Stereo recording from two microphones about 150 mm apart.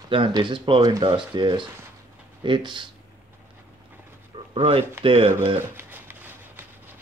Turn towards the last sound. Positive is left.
turn(degrees=-15)  # may be behind; listen again after turning